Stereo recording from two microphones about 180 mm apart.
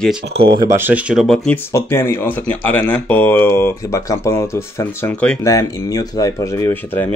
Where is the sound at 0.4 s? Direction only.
25° right (ahead or behind).